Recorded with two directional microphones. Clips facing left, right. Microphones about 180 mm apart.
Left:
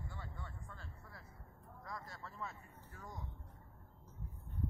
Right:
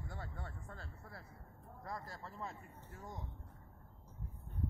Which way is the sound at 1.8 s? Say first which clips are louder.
Right 3 dB; 30° right (ahead or behind).